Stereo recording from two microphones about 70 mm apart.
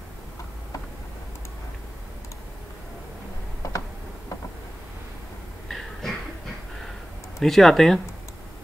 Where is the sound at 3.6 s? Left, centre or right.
Left.